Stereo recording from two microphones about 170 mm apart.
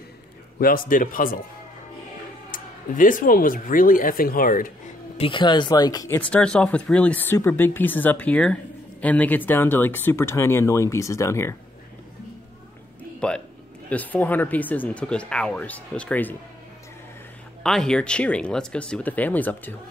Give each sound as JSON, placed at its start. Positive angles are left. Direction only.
{"t": 0.6, "sound": "speech", "side_deg": 55}
{"t": 2.5, "sound": "speech", "side_deg": 50}
{"t": 5.1, "sound": "speech", "side_deg": 30}
{"t": 6.3, "sound": "speech", "side_deg": 5}
{"t": 13.2, "sound": "speech", "side_deg": 5}
{"t": 17.6, "sound": "speech", "side_deg": 5}